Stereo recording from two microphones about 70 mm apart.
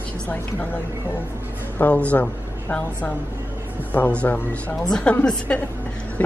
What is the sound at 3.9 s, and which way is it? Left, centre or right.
A woman's voice, left.